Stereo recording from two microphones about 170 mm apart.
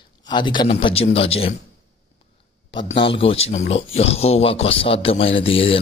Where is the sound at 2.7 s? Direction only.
30° left (ahead or behind).